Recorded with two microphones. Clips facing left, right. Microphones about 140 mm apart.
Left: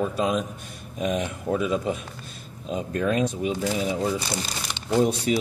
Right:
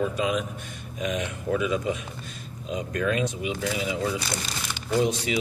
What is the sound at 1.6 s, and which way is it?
Speech, 45° left (ahead or behind).